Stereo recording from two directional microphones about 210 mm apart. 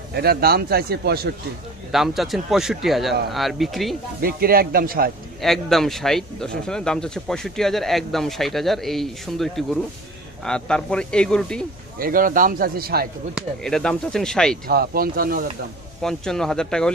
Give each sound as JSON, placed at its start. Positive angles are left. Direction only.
{"t": 0.1, "sound": "speech", "side_deg": -50}
{"t": 1.9, "sound": "speech", "side_deg": 0}
{"t": 4.2, "sound": "speech", "side_deg": -45}
{"t": 5.4, "sound": "speech", "side_deg": 0}
{"t": 12.0, "sound": "speech", "side_deg": -40}
{"t": 13.3, "sound": "speech", "side_deg": 0}
{"t": 14.7, "sound": "speech", "side_deg": -45}
{"t": 16.0, "sound": "speech", "side_deg": 0}